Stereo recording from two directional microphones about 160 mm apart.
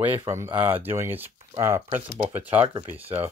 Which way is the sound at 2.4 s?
35° right (ahead or behind).